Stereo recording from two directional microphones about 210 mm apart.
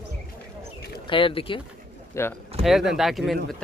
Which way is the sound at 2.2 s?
15° left (ahead or behind).